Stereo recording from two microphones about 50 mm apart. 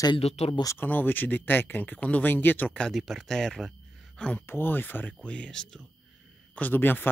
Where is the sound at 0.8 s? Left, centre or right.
Left.